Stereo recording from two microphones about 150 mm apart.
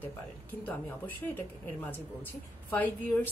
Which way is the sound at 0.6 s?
10° left (ahead or behind).